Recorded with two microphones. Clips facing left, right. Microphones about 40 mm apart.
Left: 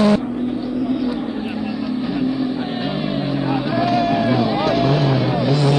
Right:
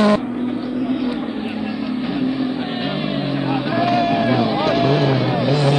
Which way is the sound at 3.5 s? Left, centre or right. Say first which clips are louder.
Right 1 dB; centre.